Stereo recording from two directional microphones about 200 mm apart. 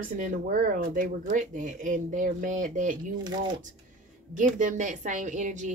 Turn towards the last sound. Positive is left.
turn(degrees=-40)  # may be behind; listen again after turning